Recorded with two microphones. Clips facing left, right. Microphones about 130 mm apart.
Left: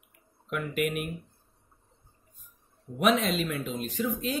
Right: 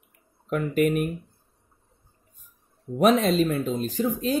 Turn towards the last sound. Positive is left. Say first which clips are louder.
# right 6 dB
turn(degrees=-35)  # may be behind; listen again after turning